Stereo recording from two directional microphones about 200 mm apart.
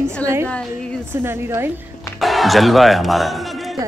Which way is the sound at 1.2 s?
10° right (ahead or behind).